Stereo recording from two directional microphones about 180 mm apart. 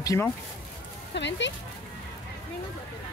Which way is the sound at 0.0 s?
20° left (ahead or behind).